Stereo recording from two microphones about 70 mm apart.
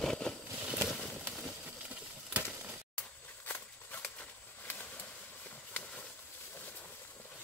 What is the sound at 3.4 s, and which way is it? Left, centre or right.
Walk, left.